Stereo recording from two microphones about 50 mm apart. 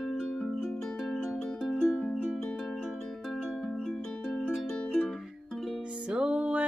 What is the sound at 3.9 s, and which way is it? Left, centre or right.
Music, centre.